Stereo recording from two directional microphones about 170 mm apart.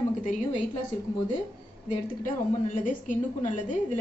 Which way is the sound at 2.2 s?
50° left (ahead or behind).